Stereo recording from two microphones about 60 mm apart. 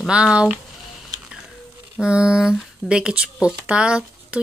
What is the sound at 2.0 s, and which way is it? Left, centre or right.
Speech, centre.